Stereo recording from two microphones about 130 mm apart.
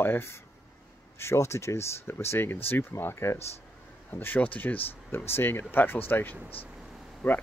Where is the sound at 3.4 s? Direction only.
55° left (ahead or behind).